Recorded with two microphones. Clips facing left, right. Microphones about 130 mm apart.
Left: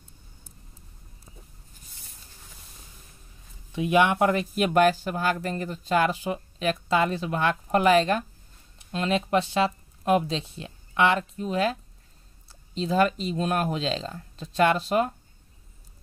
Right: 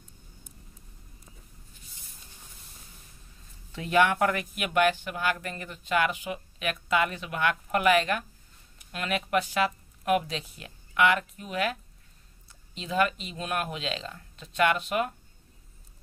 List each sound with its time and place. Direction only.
3.7 s speech: 15° left (ahead or behind); by 15.1 s 35° left (ahead or behind)